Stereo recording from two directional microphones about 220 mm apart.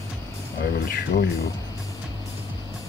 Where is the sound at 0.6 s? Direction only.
45° left (ahead or behind).